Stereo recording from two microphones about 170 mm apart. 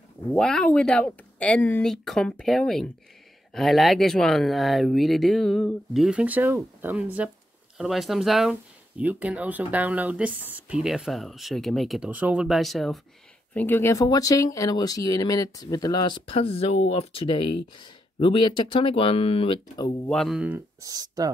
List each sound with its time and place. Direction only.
0.3 s speech: 5° left (ahead or behind)
13.5 s speech: 10° left (ahead or behind); by 20.0 s 30° left (ahead or behind)
20.1 s speech: centre (ahead or behind)
20.8 s speech: 20° right (ahead or behind)